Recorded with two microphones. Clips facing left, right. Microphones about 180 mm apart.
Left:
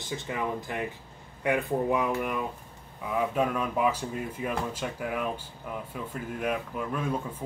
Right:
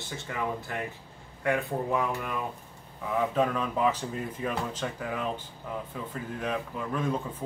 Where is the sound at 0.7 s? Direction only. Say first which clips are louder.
Left 2 dB; 20° left (ahead or behind).